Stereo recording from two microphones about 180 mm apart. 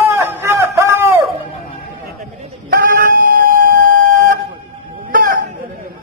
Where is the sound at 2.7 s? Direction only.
50° right (ahead or behind).